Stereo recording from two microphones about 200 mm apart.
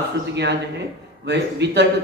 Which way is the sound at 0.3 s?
55° right (ahead or behind).